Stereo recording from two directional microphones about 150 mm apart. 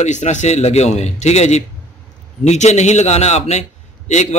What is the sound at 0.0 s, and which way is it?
A man's voice, 50° left (ahead or behind).